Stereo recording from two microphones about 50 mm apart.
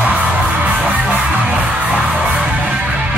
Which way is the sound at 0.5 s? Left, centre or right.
Right.